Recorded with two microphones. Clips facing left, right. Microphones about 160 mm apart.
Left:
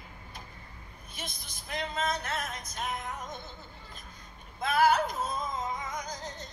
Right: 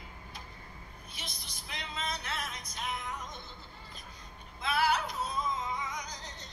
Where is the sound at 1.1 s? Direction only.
50° left (ahead or behind).